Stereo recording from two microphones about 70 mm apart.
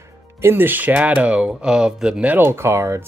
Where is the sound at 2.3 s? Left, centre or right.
Right.